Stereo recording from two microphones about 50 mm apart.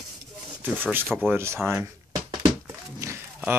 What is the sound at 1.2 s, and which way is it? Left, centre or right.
Speech, right.